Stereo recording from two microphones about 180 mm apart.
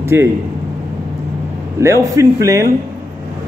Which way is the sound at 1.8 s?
15° right (ahead or behind).